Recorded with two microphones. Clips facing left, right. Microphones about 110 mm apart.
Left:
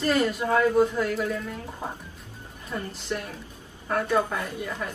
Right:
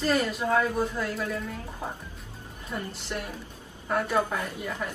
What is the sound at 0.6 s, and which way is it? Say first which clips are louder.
Speech: left 7 dB; 20° left (ahead or behind).